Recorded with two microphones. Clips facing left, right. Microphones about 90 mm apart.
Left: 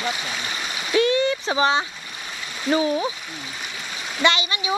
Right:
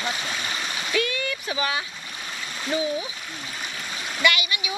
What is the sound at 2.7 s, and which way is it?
Speech, 40° left (ahead or behind).